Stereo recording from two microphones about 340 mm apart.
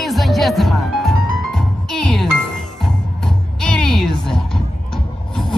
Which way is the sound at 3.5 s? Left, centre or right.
Centre.